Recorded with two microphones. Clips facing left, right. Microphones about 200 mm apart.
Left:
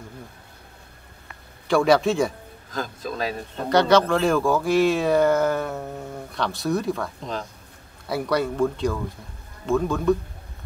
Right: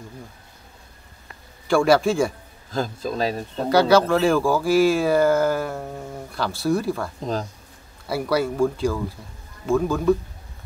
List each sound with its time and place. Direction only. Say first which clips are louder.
1.7 s speech: right 1 dB; centre (ahead or behind)
2.7 s a man's voice: right 4 dB; 30° right (ahead or behind)
3.6 s speech: right 1 dB; 5° right (ahead or behind)
8.1 s speech: right 1 dB; 5° right (ahead or behind)